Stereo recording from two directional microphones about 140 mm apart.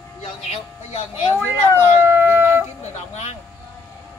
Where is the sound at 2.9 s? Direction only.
50° left (ahead or behind).